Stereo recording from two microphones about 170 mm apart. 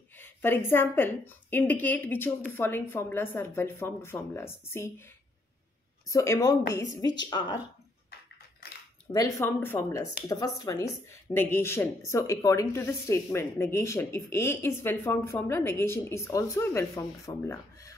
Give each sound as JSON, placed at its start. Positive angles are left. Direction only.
{"t": 0.2, "sound": "speech", "side_deg": 15}
{"t": 6.0, "sound": "speech", "side_deg": 20}
{"t": 9.1, "sound": "speech", "side_deg": 15}